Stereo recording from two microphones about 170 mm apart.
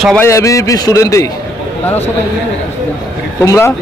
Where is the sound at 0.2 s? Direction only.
20° left (ahead or behind).